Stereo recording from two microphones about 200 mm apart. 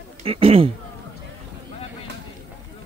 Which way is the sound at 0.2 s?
30° right (ahead or behind).